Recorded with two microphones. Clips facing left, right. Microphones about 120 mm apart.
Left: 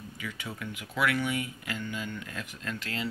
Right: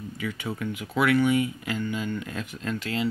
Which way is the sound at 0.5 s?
30° right (ahead or behind).